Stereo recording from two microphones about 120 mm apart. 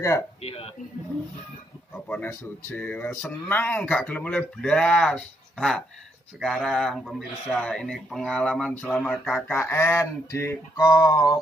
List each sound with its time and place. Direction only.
0.4 s speech: 55° left (ahead or behind)
2.7 s speech: 15° left (ahead or behind)
9.5 s a sound: 20° left (ahead or behind)